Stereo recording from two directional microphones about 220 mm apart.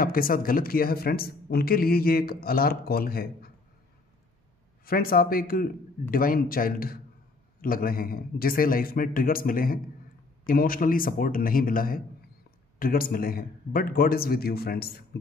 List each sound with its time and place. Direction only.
0.0 s speech: 40° left (ahead or behind)
4.8 s a man's voice: 40° left (ahead or behind)